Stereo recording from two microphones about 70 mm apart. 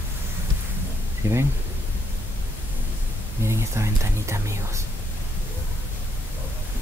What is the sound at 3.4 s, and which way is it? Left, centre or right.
Speech, right.